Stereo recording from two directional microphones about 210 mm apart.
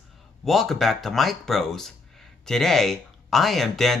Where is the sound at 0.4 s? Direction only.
Centre (ahead or behind).